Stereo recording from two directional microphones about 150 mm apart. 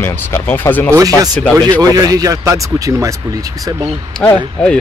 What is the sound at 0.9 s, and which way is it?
Speech, 25° right (ahead or behind).